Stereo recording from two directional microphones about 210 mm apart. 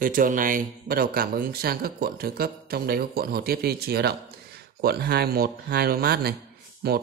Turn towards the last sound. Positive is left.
turn(degrees=-50)  # may be behind; listen again after turning